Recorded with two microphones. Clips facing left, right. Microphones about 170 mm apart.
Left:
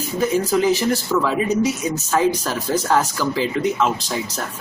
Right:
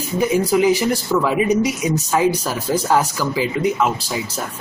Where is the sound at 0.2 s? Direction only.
10° right (ahead or behind).